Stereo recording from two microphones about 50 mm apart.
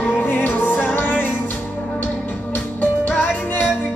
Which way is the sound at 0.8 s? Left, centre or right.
Left.